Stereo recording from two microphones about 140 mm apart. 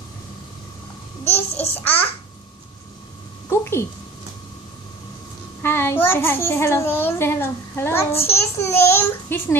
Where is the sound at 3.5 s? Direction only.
20° left (ahead or behind).